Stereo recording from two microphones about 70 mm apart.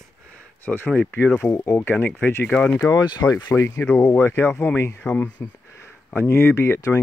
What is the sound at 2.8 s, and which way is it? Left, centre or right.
Speech, left.